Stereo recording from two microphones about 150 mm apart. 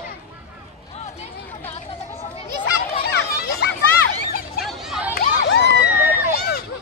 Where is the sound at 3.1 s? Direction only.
90° left.